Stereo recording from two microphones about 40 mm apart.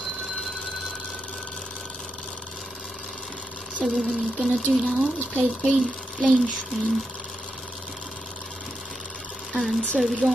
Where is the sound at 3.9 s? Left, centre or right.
Centre.